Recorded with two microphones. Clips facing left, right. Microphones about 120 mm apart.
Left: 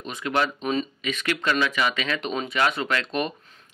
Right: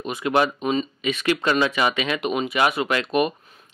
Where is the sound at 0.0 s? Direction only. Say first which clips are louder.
Right 4 dB; 15° right (ahead or behind).